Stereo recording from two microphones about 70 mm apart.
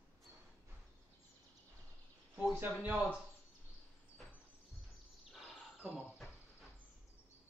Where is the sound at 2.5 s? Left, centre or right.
Right.